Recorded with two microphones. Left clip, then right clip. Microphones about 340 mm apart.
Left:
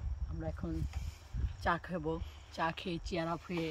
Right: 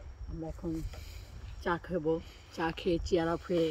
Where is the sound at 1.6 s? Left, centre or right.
Centre.